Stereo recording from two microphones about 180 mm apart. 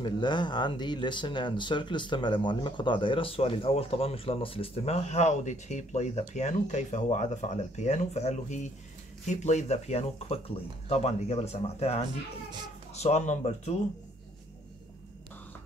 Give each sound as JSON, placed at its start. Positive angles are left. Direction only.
{"t": 0.0, "sound": "speech", "side_deg": 25}